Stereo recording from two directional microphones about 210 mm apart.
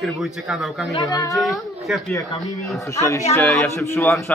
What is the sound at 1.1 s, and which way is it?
Speech, 15° left (ahead or behind).